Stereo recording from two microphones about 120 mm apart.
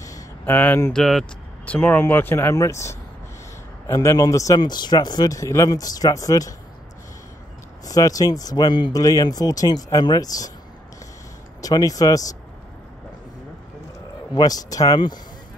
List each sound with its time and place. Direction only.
0.5 s speech: 15° left (ahead or behind)
0.9 s speech: centre (ahead or behind)
1.7 s speech: 15° left (ahead or behind)
7.8 s speech: 30° left (ahead or behind)
11.6 s speech: 30° left (ahead or behind)
14.3 s speech: 35° left (ahead or behind)